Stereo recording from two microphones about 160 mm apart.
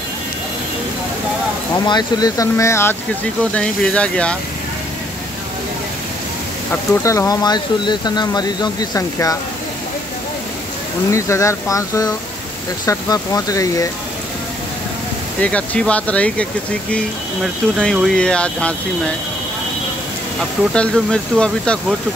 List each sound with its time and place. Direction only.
1.9 s speech: 25° left (ahead or behind); by 4.4 s 5° left (ahead or behind)
6.7 s speech: 20° left (ahead or behind)
11.1 s speech: 20° left (ahead or behind)
15.4 s speech: 10° left (ahead or behind)
20.7 s speech: 5° left (ahead or behind)